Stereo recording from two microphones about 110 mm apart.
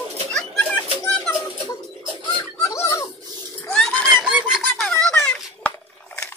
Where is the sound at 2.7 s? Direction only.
30° left (ahead or behind).